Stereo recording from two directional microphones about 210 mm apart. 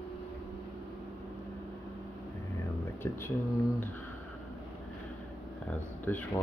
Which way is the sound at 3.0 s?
10° left (ahead or behind).